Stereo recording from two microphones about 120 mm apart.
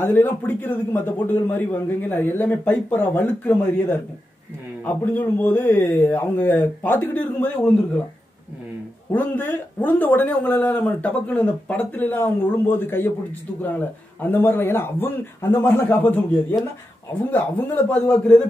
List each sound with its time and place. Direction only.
0.0 s speech: 15° left (ahead or behind)
4.8 s speech: 15° left (ahead or behind)
9.1 s speech: 15° left (ahead or behind)
14.2 s speech: 15° left (ahead or behind)
17.3 s speech: 15° left (ahead or behind)